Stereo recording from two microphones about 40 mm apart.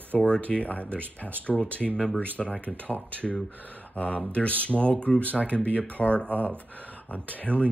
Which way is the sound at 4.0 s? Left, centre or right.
Left.